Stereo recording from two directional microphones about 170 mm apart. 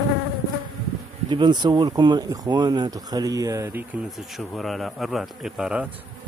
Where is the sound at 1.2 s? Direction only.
25° right (ahead or behind).